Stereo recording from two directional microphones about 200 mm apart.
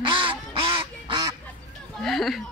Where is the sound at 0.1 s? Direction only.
25° right (ahead or behind).